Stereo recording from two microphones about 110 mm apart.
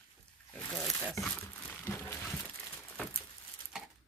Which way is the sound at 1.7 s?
20° left (ahead or behind).